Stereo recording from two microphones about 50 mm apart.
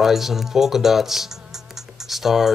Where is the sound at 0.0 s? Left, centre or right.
Centre.